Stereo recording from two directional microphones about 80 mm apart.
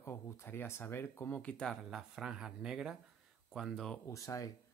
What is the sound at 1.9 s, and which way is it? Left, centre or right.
Speech, centre.